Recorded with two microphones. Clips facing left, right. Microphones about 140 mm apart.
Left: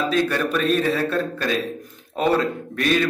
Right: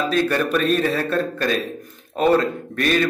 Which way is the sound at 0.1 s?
Centre (ahead or behind).